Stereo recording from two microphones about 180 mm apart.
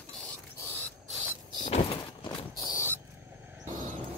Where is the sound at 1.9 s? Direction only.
30° left (ahead or behind).